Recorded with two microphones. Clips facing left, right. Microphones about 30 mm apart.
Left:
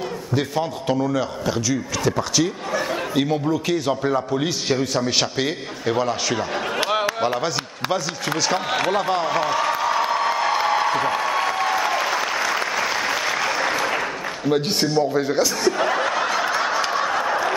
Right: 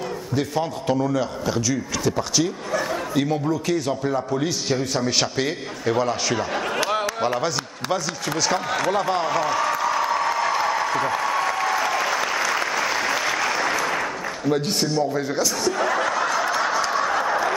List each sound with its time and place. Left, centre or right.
0.6 s a man's voice: centre
2.7 s chatter: centre
3.6 s a man's voice: centre
6.8 s speech: centre
8.7 s applause: left
14.5 s chuckle: centre